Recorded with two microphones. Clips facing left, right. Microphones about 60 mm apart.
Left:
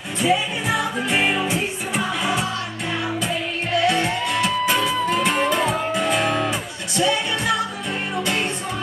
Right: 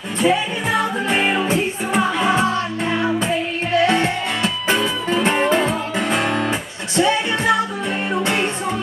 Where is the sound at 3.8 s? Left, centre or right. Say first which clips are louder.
Right 2 dB; right.